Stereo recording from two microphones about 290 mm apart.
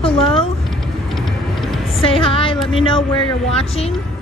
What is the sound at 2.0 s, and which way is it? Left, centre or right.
Music, centre.